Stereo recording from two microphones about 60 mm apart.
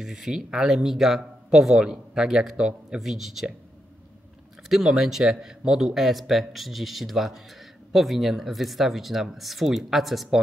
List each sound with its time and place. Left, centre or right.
0.0 s speech: centre
4.6 s speech: centre